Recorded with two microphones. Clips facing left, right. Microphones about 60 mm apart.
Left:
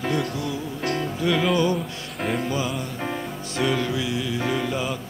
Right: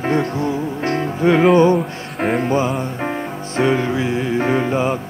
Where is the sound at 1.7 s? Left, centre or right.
Right.